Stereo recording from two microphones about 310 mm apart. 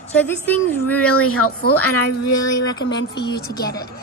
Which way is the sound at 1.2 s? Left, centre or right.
Left.